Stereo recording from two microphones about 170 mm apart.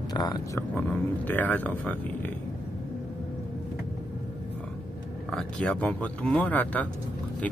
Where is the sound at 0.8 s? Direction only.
10° left (ahead or behind).